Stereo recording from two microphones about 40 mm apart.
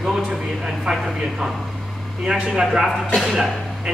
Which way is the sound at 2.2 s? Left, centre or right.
Centre.